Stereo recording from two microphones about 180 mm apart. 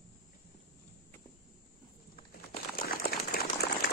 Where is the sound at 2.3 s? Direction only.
55° left (ahead or behind).